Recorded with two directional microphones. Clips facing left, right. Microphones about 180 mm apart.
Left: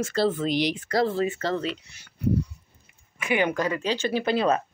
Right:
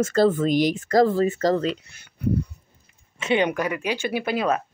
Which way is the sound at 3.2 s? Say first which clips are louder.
Right 2 dB; 20° right (ahead or behind).